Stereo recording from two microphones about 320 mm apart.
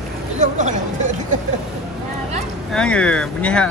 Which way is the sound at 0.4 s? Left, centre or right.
Right.